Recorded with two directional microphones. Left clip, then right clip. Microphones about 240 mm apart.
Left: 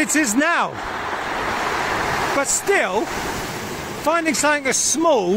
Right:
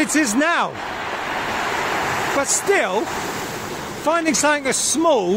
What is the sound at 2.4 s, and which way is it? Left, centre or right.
Speech, centre.